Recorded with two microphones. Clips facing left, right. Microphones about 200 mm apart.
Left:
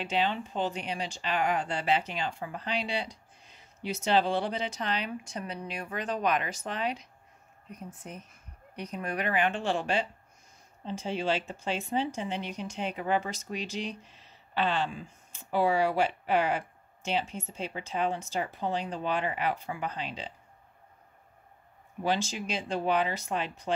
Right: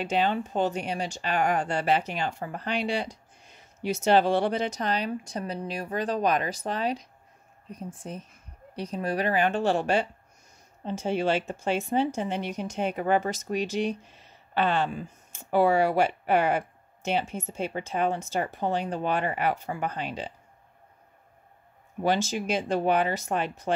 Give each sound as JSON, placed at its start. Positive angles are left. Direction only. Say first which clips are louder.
{"t": 0.0, "sound": "a woman's voice", "louder": "right 4 dB", "side_deg": -45}
{"t": 22.0, "sound": "speech", "louder": "right 4 dB", "side_deg": -45}